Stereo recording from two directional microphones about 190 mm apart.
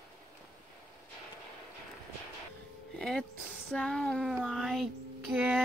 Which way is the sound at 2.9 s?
5° left (ahead or behind).